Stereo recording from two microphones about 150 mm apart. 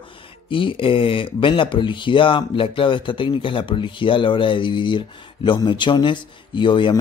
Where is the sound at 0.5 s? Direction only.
35° left (ahead or behind).